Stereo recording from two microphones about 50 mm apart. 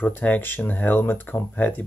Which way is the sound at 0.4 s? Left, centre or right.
Left.